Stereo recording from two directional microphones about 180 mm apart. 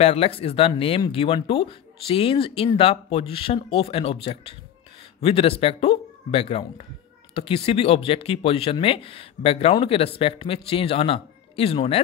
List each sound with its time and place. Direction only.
0.0 s speech: 35° left (ahead or behind)